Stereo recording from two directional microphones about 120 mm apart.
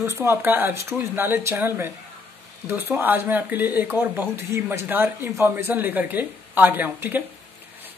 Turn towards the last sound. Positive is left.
turn(degrees=-15)  # may be behind; listen again after turning